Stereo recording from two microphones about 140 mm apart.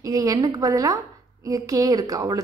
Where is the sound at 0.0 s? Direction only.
25° right (ahead or behind).